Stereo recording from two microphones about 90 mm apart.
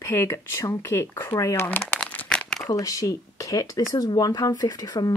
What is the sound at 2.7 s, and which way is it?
Speech, 40° left (ahead or behind).